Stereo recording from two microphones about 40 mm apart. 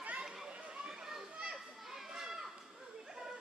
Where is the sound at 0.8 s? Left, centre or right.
Centre.